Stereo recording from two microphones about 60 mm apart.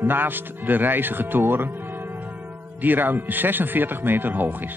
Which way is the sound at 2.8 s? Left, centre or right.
Right.